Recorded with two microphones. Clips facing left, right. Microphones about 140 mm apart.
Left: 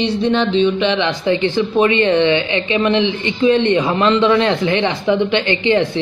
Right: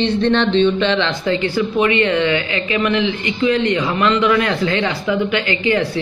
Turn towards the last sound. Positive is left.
turn(degrees=25)  # may be behind; listen again after turning